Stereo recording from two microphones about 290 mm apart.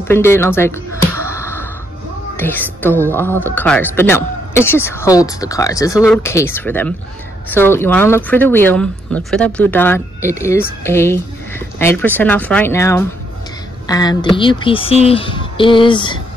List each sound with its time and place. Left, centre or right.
0.1 s a sound: centre
2.3 s music: centre
2.8 s speech: centre